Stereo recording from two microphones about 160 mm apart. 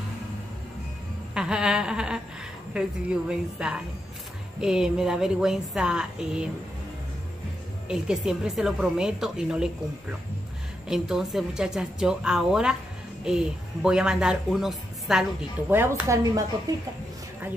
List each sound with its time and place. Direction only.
1.3 s a sound: 5° right (ahead or behind)
2.7 s speech: 5° right (ahead or behind)
7.9 s speech: 5° right (ahead or behind)
10.9 s speech: 5° right (ahead or behind)
15.7 s speech: 15° right (ahead or behind)